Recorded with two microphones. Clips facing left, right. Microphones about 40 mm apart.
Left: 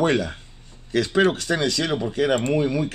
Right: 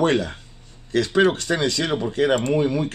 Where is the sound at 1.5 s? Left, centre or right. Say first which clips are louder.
Right 1 dB; centre.